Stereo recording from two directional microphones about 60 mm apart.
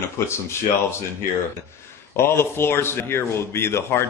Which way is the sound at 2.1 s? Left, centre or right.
Left.